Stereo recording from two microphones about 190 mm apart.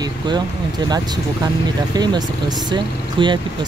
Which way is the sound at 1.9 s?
20° right (ahead or behind).